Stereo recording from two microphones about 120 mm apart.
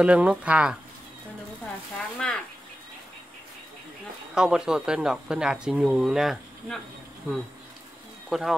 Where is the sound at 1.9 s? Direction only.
5° left (ahead or behind).